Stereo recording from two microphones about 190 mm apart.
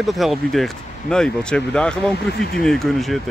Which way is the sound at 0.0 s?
Centre (ahead or behind).